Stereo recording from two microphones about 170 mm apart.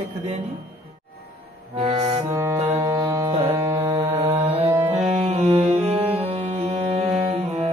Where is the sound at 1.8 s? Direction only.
40° right (ahead or behind).